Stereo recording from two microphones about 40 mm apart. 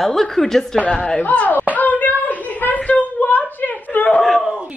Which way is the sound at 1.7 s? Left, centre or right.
Left.